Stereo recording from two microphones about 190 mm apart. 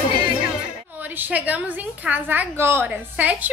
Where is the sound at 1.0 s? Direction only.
10° right (ahead or behind).